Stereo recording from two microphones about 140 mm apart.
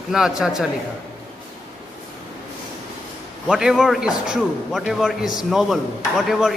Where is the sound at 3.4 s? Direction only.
5° right (ahead or behind).